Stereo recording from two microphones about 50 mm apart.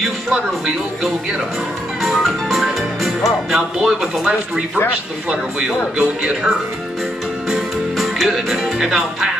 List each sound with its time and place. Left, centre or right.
2.2 s music: centre
4.0 s speech: centre
5.3 s speech: right
7.5 s music: centre